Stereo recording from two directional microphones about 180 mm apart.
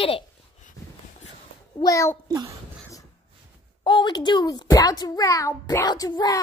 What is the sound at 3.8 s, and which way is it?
A child's voice, 25° left (ahead or behind).